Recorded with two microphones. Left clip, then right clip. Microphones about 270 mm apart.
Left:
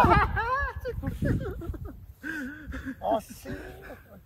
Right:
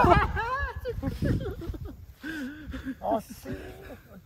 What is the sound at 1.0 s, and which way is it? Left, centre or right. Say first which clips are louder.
Speech: right 2 dB; right.